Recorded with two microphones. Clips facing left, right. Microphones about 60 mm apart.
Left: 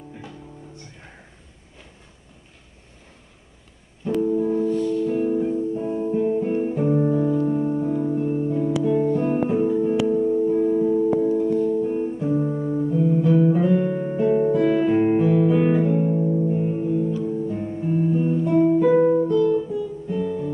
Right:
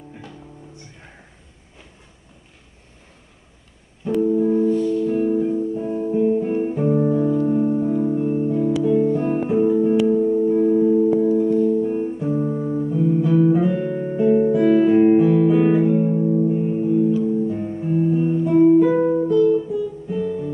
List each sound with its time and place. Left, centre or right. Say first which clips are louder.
4.0 s music: right 3 dB; centre
19.7 s guitar: right 2 dB; centre